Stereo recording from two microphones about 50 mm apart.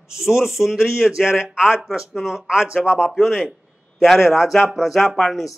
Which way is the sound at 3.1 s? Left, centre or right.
Centre.